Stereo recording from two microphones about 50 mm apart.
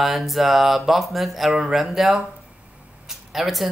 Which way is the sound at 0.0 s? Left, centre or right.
Centre.